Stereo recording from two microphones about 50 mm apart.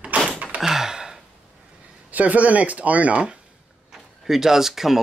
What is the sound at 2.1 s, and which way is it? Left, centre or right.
Speech, right.